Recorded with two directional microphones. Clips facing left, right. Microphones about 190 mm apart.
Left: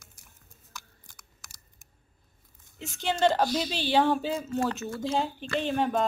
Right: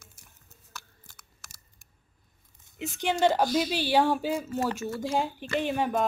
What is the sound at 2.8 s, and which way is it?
Speech, 15° right (ahead or behind).